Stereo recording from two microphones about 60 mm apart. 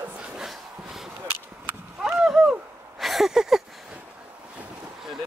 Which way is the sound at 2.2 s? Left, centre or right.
Centre.